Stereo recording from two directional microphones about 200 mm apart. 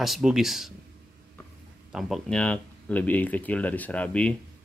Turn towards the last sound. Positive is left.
turn(degrees=5)  # may be behind; listen again after turning